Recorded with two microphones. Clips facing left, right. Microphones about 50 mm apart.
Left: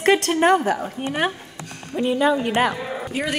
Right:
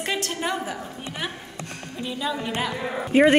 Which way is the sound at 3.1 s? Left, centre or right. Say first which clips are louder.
Right 11 dB; right.